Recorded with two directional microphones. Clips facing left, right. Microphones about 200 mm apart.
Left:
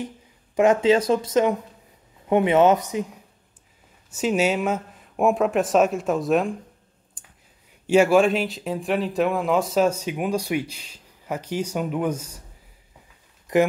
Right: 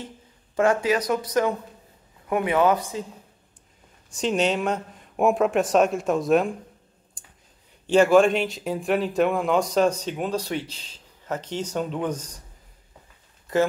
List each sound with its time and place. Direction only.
0.6 s speech: 20° left (ahead or behind)
4.1 s speech: 5° left (ahead or behind)
7.8 s speech: 10° left (ahead or behind)
13.5 s speech: 15° left (ahead or behind)